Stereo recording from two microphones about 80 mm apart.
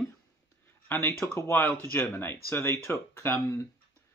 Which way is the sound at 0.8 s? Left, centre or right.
Left.